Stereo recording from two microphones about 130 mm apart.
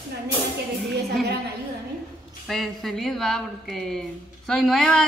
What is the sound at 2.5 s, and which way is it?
Speech, centre (ahead or behind).